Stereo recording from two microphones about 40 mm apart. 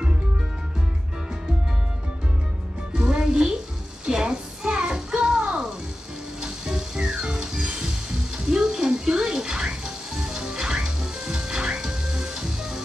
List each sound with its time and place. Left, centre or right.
2.9 s music: centre